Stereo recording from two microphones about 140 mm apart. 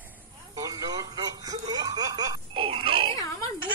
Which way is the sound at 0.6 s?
25° right (ahead or behind).